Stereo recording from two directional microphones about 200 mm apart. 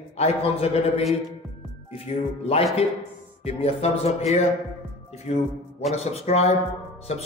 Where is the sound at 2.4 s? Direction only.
30° left (ahead or behind).